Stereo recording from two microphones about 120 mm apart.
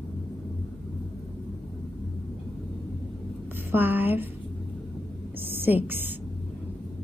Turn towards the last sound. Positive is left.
turn(degrees=-15)  # may be behind; listen again after turning